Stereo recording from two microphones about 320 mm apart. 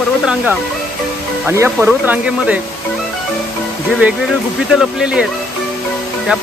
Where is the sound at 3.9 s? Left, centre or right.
Centre.